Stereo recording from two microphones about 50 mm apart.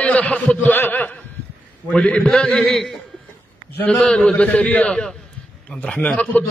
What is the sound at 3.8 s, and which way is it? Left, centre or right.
A man's voice, left.